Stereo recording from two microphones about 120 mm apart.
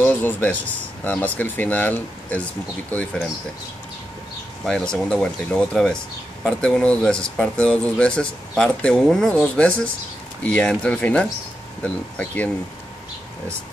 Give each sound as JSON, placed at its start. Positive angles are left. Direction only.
{"t": 0.0, "sound": "speech", "side_deg": 15}
{"t": 4.6, "sound": "speech", "side_deg": 5}